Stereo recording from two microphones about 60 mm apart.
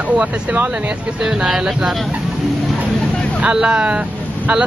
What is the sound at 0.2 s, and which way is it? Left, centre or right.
Speech, right.